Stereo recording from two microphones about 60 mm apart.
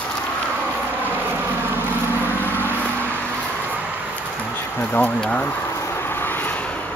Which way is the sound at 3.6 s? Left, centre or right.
Right.